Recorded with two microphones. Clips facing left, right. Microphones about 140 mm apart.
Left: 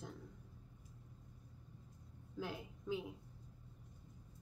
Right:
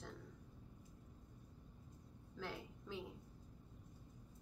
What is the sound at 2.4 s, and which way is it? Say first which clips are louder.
Speech: left 4 dB; 15° left (ahead or behind).